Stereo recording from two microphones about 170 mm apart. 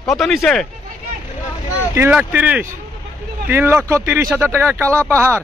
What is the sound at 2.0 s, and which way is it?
A man's voice, 10° right (ahead or behind).